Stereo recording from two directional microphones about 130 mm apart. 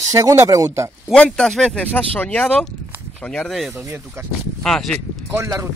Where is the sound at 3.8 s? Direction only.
20° right (ahead or behind).